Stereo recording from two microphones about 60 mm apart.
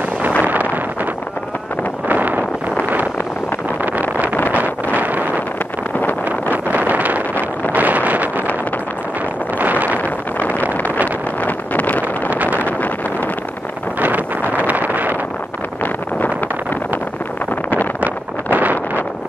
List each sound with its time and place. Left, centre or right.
0.4 s vehicle: right
2.0 s vehicle: right
3.8 s vehicle: right
4.6 s wind noise: right
6.5 s vehicle: right
7.7 s wind noise: right
9.6 s wind noise: right
10.0 s a sound: left
11.4 s vehicle: left
12.3 s vehicle: right
12.6 s vehicle: left
13.9 s wind noise: right
18.0 s vehicle: right